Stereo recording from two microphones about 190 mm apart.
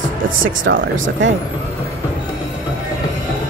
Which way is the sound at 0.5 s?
90° right.